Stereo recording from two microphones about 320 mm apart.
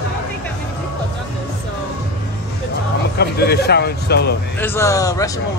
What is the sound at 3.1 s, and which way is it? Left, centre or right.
Speech, left.